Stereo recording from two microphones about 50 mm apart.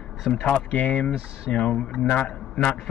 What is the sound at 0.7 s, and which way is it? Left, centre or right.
A man's voice, left.